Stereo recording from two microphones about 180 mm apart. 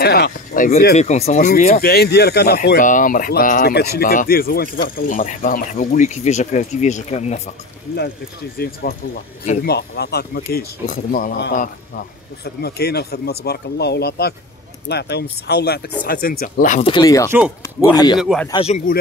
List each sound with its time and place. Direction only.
0.0 s a sound: 60° left (ahead or behind)
0.9 s speech: 40° left (ahead or behind)
1.8 s speech: 60° left (ahead or behind)
3.7 s speech: 60° left (ahead or behind); by 7.4 s 40° left (ahead or behind)
8.6 s speech: 60° left (ahead or behind)
12.6 s speech: 65° left (ahead or behind)
16.8 s speech: 25° left (ahead or behind)
17.3 s speech: 5° right (ahead or behind)
17.9 s speech: 20° left (ahead or behind)
18.2 s speech: centre (ahead or behind)
18.5 s speech: 30° left (ahead or behind)